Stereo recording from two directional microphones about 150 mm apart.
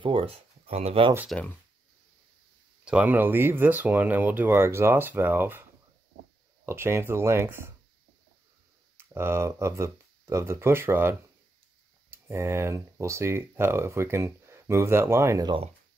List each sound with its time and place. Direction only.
0.0 s speech: 35° right (ahead or behind)
1.3 s speech: 10° left (ahead or behind)
2.8 s speech: 10° right (ahead or behind)
8.9 s speech: 15° right (ahead or behind)